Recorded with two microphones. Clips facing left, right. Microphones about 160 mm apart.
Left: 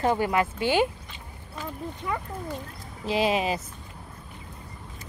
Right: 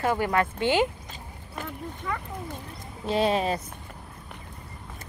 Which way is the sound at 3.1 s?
5° left (ahead or behind).